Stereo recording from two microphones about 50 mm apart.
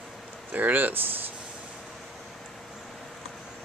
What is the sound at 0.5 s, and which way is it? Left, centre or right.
Speech, right.